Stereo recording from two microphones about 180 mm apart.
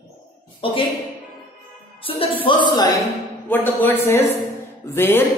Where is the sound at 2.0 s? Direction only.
30° left (ahead or behind).